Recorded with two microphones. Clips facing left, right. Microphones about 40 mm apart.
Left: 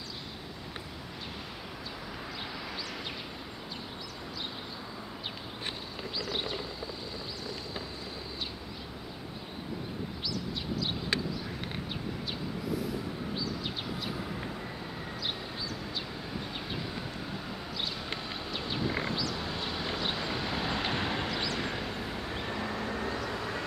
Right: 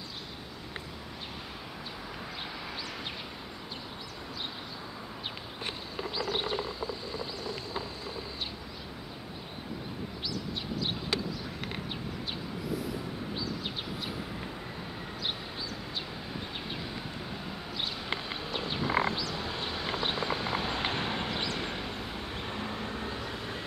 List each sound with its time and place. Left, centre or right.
6.1 s a sound: centre
17.7 s clip-clop: right
18.9 s frog: right
19.3 s a sound: centre
20.0 s vehicle: centre
21.3 s vehicle: right
21.5 s vehicle: centre